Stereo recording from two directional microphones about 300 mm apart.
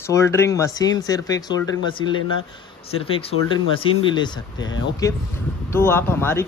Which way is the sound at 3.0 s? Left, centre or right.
Centre.